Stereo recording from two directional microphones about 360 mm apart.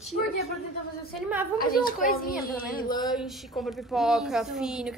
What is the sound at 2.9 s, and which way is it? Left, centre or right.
Speech, centre.